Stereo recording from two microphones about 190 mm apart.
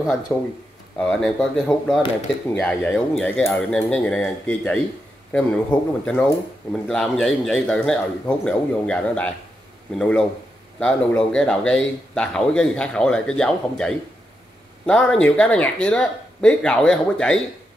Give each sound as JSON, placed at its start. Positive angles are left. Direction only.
{"t": 0.3, "sound": "speech", "side_deg": 15}
{"t": 0.9, "sound": "speech", "side_deg": 5}